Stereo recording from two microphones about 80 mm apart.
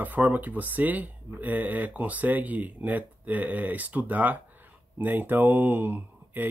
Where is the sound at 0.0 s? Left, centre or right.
Right.